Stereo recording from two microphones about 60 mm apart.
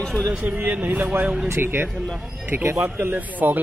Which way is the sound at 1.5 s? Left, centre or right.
Right.